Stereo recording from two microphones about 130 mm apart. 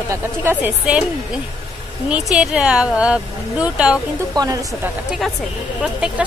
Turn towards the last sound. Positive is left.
turn(degrees=-5)  # may be behind; listen again after turning